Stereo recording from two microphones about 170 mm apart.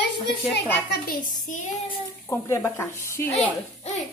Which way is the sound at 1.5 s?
50° left (ahead or behind).